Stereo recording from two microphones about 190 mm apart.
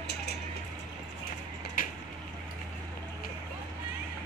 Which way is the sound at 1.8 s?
45° left (ahead or behind).